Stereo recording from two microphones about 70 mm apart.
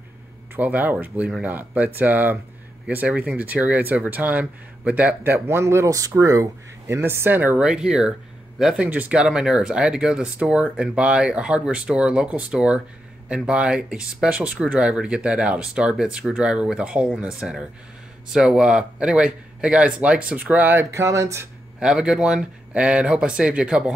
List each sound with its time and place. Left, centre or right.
0.6 s speech: right
5.9 s speech: right
7.0 s speech: right
7.6 s speech: centre
8.8 s speech: right
20.9 s speech: right
21.7 s speech: centre